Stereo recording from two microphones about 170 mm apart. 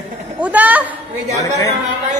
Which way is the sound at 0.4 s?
10° right (ahead or behind).